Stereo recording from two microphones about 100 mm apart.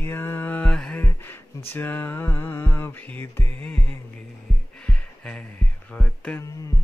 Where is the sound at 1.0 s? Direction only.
20° left (ahead or behind).